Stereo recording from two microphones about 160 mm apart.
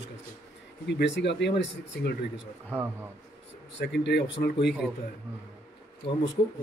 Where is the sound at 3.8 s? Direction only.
90° left.